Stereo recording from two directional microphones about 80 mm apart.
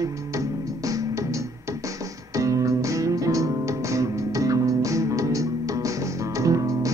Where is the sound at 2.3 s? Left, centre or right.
Right.